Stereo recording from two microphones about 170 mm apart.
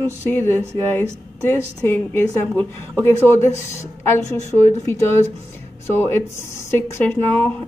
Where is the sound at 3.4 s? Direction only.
15° left (ahead or behind).